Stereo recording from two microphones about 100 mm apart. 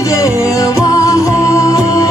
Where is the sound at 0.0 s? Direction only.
35° left (ahead or behind).